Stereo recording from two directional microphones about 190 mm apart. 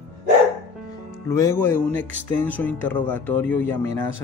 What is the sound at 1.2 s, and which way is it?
Music, 15° left (ahead or behind).